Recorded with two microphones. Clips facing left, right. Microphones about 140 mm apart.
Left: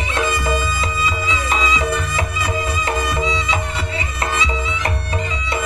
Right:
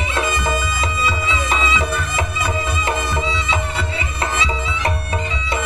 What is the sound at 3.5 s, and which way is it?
Music, 30° right (ahead or behind).